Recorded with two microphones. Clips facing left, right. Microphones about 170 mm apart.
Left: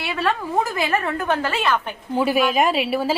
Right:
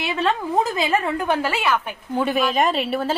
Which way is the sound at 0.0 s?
20° right (ahead or behind).